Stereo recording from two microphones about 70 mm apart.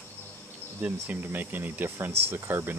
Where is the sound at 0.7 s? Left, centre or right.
Right.